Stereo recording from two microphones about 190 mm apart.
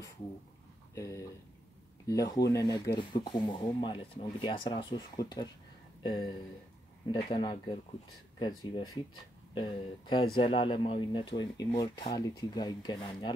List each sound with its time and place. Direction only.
0.9 s speech: 15° left (ahead or behind)